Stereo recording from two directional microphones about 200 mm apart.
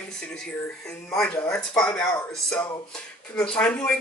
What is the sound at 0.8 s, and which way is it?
A woman's voice, 5° left (ahead or behind).